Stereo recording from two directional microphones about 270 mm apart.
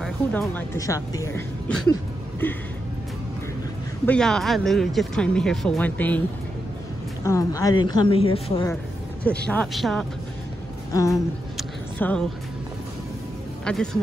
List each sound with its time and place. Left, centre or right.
0.0 s a woman's voice: centre
4.0 s speech: centre
7.2 s a woman's voice: centre
9.2 s speech: centre
10.9 s a woman's voice: centre
11.5 s a sound: centre
13.7 s speech: centre